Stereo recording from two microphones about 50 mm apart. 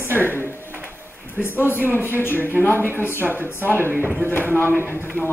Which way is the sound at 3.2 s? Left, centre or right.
Right.